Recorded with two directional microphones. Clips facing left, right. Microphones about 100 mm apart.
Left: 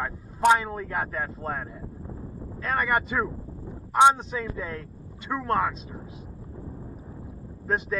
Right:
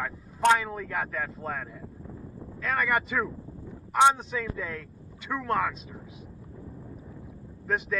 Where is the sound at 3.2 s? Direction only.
20° left (ahead or behind).